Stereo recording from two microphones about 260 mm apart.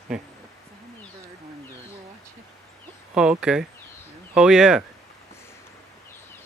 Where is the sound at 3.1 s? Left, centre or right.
Centre.